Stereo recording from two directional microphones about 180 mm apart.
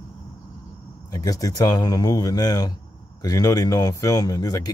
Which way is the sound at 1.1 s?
20° left (ahead or behind).